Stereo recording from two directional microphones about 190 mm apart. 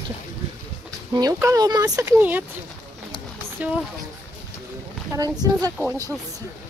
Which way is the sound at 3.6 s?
10° right (ahead or behind).